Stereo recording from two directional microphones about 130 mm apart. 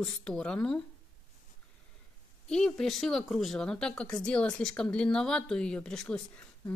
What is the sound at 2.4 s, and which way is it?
Speech, 5° left (ahead or behind).